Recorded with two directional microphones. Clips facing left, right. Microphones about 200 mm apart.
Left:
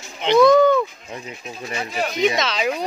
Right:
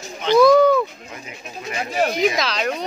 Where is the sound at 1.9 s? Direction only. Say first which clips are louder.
Right 6 dB; 45° right (ahead or behind).